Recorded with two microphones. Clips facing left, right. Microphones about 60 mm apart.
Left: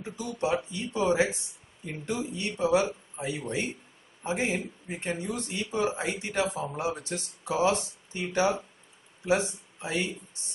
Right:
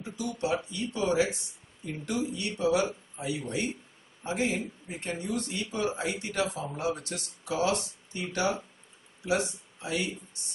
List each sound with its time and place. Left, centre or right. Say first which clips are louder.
0.2 s a man's voice: left 1 dB; left